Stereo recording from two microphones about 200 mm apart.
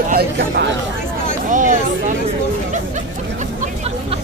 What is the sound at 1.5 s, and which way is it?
Speech, 40° right (ahead or behind).